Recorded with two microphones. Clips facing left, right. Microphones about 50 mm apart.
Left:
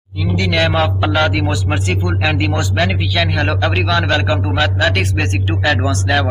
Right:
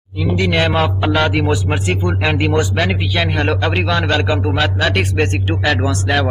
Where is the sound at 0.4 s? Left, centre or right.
Centre.